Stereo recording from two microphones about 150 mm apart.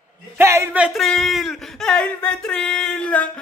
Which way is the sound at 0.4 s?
15° right (ahead or behind).